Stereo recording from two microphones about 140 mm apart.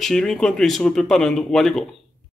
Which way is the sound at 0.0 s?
5° left (ahead or behind).